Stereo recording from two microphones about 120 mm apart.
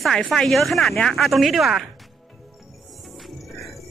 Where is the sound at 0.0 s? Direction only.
Centre (ahead or behind).